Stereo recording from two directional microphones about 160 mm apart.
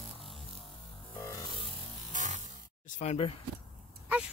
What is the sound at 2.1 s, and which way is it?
Static, 50° right (ahead or behind).